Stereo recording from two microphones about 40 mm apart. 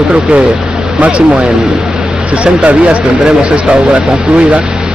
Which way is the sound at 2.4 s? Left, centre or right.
Right.